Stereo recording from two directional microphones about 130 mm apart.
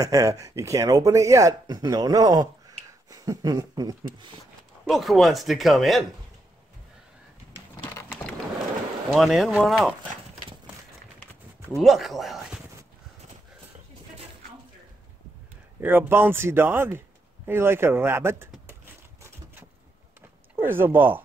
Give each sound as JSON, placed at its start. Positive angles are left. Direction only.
{"t": 0.0, "sound": "speech", "side_deg": -25}
{"t": 4.8, "sound": "speech", "side_deg": 0}
{"t": 9.1, "sound": "speech", "side_deg": 0}
{"t": 11.7, "sound": "speech", "side_deg": 0}
{"t": 15.8, "sound": "speech", "side_deg": -15}
{"t": 18.7, "sound": "typewriter", "side_deg": -20}
{"t": 20.5, "sound": "speech", "side_deg": -15}